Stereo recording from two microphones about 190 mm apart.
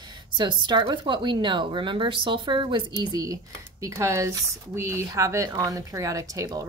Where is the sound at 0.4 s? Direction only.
25° right (ahead or behind).